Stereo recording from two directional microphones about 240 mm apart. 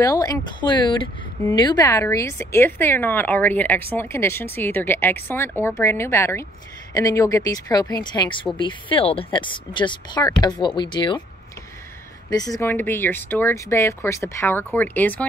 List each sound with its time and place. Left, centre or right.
0.0 s speech: centre
12.3 s speech: centre